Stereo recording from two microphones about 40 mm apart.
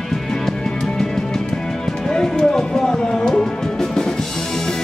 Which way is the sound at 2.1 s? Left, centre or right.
Centre.